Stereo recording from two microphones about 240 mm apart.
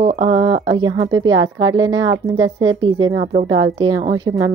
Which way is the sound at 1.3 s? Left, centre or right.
Right.